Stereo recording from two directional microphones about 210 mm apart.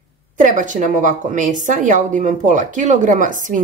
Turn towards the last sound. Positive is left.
turn(degrees=-40)  # may be behind; listen again after turning